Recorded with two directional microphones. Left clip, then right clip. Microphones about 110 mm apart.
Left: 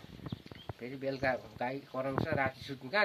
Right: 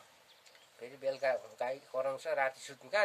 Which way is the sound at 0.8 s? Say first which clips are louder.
Even; 25° right (ahead or behind).